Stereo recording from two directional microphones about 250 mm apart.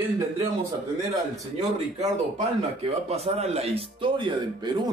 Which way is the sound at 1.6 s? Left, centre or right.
Right.